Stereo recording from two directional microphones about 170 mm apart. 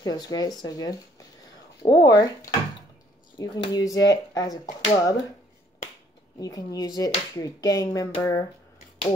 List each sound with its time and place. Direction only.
0.0 s speech: 25° left (ahead or behind)
6.4 s speech: 20° left (ahead or behind)